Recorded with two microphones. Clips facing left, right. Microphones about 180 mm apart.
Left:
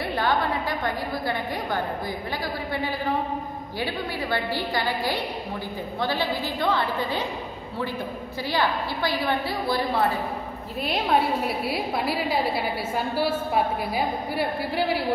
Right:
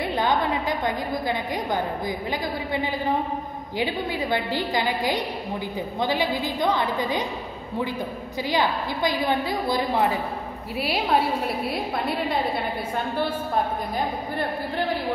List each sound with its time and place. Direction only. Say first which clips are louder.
0.0 s a woman's voice: right 1 dB; 20° right (ahead or behind)
8.5 s a woman's voice: right 1 dB; 15° right (ahead or behind)
10.8 s a woman's voice: even; centre (ahead or behind)